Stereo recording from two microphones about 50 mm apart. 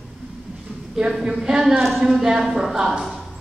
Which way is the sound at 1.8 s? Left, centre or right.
Centre.